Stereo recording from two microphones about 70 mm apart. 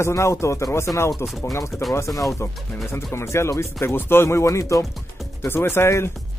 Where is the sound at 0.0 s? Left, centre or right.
Left.